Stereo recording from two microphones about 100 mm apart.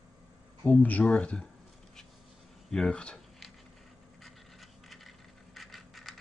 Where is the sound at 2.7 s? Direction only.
5° left (ahead or behind).